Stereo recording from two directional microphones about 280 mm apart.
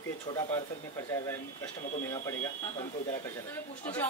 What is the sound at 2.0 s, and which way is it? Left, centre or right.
Speech, centre.